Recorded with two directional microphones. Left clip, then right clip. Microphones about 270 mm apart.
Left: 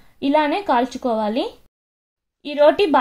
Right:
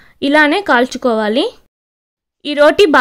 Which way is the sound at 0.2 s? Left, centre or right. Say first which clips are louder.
Right 7 dB; right.